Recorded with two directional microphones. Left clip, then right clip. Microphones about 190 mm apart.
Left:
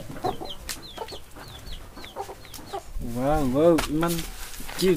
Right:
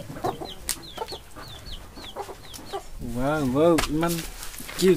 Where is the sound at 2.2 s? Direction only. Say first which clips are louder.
Even; 35° right (ahead or behind).